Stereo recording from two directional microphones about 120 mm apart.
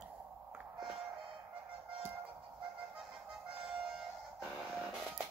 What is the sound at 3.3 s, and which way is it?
Music, 5° right (ahead or behind).